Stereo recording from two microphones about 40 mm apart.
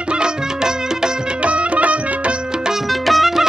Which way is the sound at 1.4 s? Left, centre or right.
Right.